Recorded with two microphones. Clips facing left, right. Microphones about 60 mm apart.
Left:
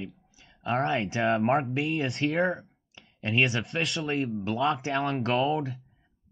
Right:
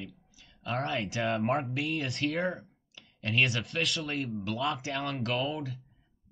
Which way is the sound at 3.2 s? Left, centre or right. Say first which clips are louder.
Left 3 dB; left.